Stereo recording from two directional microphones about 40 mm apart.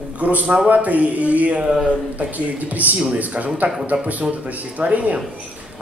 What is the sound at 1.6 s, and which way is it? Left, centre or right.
Speech, centre.